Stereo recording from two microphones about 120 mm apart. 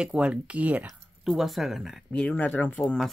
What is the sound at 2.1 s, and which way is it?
Speech, 10° left (ahead or behind).